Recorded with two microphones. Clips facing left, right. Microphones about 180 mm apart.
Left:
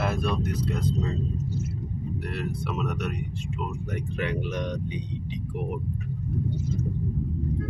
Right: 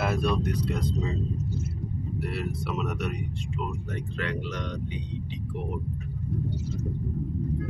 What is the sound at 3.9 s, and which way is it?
Speech, 20° left (ahead or behind).